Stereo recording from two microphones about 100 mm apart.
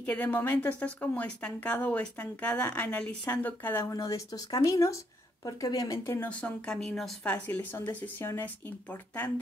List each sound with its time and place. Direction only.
0.0 s a woman's voice: 15° left (ahead or behind)
3.9 s speech: 35° left (ahead or behind)
6.2 s a woman's voice: 10° left (ahead or behind)